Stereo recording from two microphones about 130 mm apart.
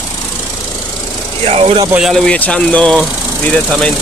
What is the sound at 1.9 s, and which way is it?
Speech, 5° right (ahead or behind).